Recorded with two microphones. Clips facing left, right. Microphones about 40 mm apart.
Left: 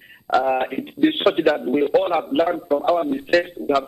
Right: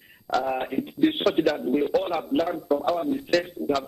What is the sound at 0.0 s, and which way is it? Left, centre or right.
A man's voice, left.